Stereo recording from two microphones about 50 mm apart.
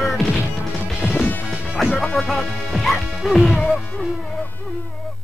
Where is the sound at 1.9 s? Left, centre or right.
Left.